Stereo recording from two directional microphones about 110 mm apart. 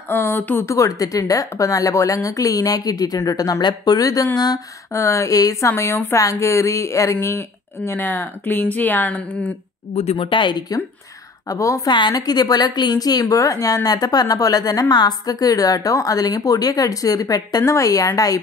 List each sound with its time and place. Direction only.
0.1 s a woman's voice: 20° left (ahead or behind)
10.1 s speech: 50° left (ahead or behind)
11.4 s a woman's voice: 30° left (ahead or behind)